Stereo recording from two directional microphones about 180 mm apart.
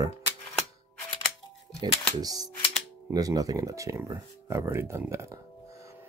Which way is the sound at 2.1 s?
20° right (ahead or behind).